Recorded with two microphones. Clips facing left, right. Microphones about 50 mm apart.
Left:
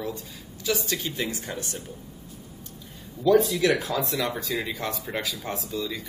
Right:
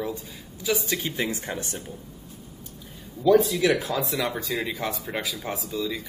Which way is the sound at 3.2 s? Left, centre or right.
Centre.